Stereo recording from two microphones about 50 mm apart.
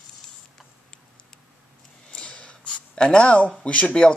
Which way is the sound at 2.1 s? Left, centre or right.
Left.